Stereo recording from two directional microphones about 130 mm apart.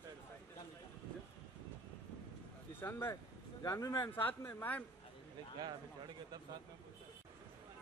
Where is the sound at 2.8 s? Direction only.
15° left (ahead or behind).